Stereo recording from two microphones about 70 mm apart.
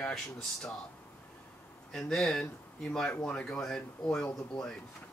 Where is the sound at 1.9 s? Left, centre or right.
Centre.